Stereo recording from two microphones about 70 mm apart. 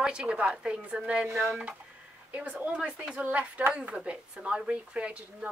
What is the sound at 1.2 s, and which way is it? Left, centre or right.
Speech, right.